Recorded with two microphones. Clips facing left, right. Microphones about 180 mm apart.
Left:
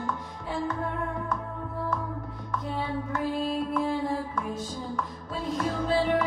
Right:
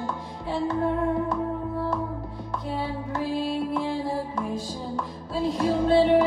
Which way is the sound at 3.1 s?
30° right (ahead or behind).